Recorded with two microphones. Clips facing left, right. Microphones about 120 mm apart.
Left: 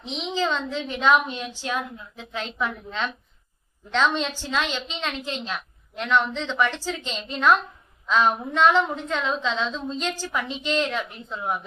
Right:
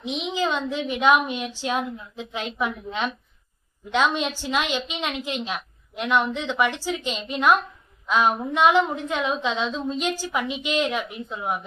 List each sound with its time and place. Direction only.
0.3 s a woman's voice: 15° right (ahead or behind)